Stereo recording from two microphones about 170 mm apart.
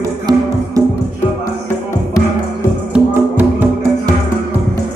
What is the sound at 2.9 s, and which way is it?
Music, 10° right (ahead or behind).